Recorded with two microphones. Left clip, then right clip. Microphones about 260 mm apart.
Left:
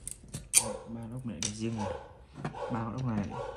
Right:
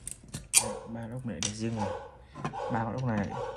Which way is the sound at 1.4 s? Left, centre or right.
Centre.